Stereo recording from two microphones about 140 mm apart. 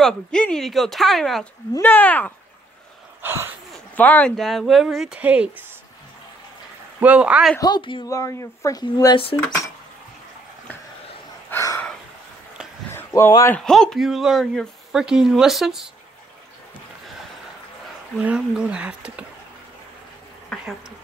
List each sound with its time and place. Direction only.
0.0 s speech: 5° left (ahead or behind)
1.8 s speech: 10° left (ahead or behind)
3.2 s a sound: 15° right (ahead or behind)
3.7 s speech: 10° left (ahead or behind); by 5.5 s 10° right (ahead or behind)
7.0 s speech: 10° right (ahead or behind)
7.6 s speech: 35° left (ahead or behind)
8.1 s speech: 20° left (ahead or behind)
8.8 s speech: 35° left (ahead or behind)
11.5 s a sound: 20° left (ahead or behind)
12.9 s a sound: 20° left (ahead or behind)
13.5 s speech: 5° left (ahead or behind)
18.1 s speech: 5° right (ahead or behind)
20.5 s a sound: 5° left (ahead or behind)